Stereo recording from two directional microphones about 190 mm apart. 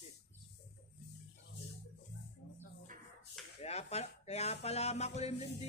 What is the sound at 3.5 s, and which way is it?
Speech, 35° left (ahead or behind).